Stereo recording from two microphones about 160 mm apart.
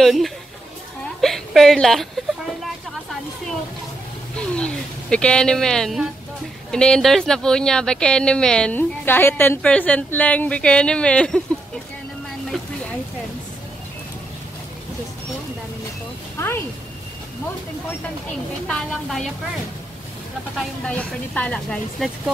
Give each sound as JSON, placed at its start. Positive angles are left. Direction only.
{"t": 0.0, "sound": "a woman's voice", "side_deg": 0}
{"t": 4.4, "sound": "a woman's voice", "side_deg": 5}
{"t": 16.3, "sound": "a sound", "side_deg": 15}
{"t": 18.7, "sound": "a woman's voice", "side_deg": 5}
{"t": 20.5, "sound": "speech", "side_deg": 5}